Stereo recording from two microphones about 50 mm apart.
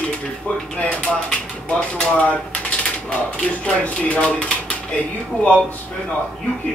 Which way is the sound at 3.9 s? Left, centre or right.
Left.